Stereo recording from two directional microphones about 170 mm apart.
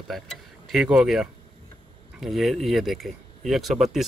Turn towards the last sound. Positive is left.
turn(degrees=0)  # may be behind; listen again after turning